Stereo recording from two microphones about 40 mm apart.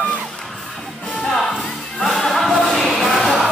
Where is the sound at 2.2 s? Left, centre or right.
Centre.